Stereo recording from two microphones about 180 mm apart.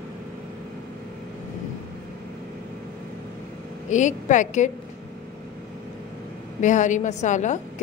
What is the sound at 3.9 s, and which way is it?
Speech, 45° left (ahead or behind).